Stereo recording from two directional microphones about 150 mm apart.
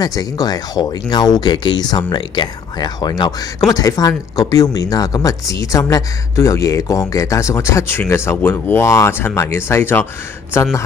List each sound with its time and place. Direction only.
0.0 s speech: 25° left (ahead or behind)